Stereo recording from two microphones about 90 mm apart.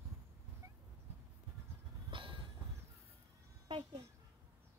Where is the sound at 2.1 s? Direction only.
70° right (ahead or behind).